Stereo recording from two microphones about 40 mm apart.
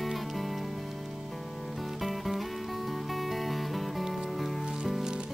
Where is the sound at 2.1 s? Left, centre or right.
Centre.